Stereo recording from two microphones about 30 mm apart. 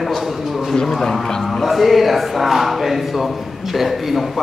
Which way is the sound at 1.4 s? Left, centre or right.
Centre.